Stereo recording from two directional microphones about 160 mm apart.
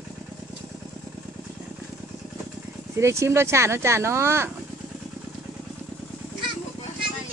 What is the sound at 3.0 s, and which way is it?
Speech, 15° right (ahead or behind).